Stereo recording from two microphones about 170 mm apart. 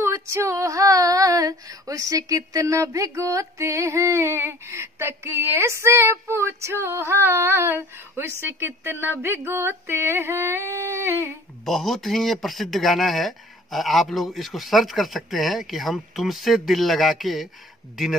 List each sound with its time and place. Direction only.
0.0 s female singing: 15° right (ahead or behind)
11.6 s speech: centre (ahead or behind)